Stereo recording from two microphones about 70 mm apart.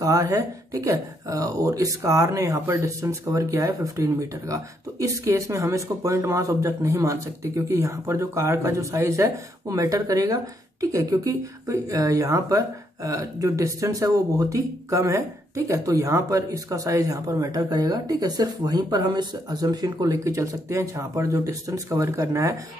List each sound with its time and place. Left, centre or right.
0.0 s speech: right
7.6 s speech: right